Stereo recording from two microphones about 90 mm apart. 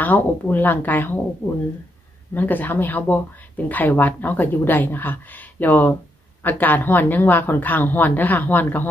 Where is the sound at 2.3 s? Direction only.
20° left (ahead or behind).